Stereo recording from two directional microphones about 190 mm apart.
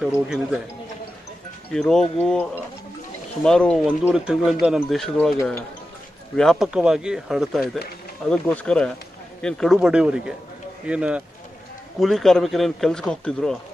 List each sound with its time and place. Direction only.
0.0 s speech: 5° right (ahead or behind)
1.7 s speech: centre (ahead or behind)
6.3 s speech: 5° left (ahead or behind)